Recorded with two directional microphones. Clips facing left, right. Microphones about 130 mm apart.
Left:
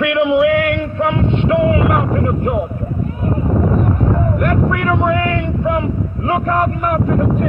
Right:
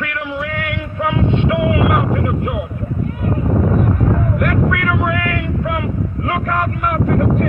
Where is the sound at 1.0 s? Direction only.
15° right (ahead or behind).